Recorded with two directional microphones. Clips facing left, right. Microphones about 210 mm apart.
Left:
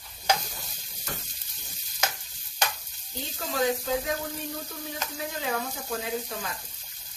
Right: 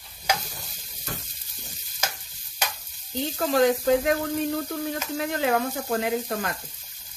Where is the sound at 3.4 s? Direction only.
60° right (ahead or behind).